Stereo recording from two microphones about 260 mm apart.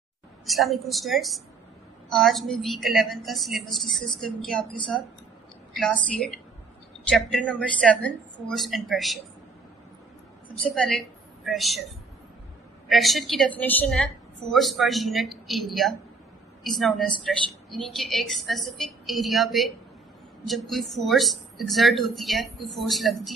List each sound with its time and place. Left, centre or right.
0.5 s a woman's voice: centre
7.1 s a woman's voice: centre
10.6 s a woman's voice: centre